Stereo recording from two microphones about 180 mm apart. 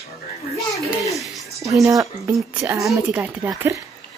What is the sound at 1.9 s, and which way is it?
A woman's voice, 20° right (ahead or behind).